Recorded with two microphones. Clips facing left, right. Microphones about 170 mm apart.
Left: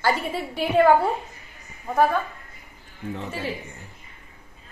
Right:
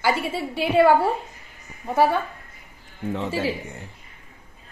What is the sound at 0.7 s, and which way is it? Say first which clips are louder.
Speech: right 1 dB; 10° right (ahead or behind).